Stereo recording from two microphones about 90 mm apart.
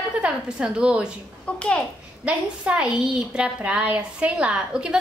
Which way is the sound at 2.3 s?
10° right (ahead or behind).